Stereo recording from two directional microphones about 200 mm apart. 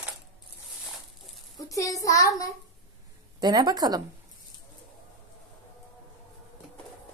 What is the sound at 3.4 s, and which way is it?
Speech, 20° right (ahead or behind).